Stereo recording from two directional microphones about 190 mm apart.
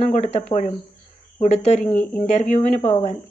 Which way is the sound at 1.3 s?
35° left (ahead or behind).